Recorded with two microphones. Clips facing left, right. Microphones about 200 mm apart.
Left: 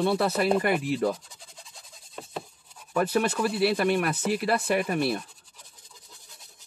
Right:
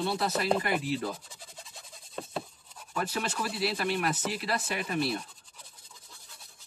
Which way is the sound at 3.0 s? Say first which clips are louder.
Left 8 dB; 55° left (ahead or behind).